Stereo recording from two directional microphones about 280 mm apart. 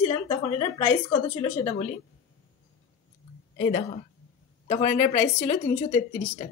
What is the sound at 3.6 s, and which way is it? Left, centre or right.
Speech, left.